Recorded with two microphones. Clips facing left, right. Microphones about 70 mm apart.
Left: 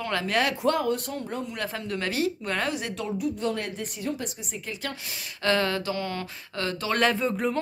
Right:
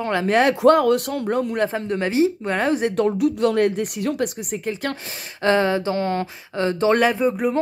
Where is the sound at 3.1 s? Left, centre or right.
Right.